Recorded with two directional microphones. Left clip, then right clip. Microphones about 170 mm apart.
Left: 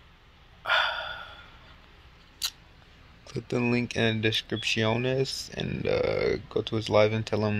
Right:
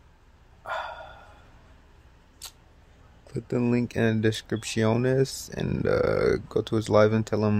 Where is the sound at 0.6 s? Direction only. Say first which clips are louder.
Left 8 dB; 5° right (ahead or behind).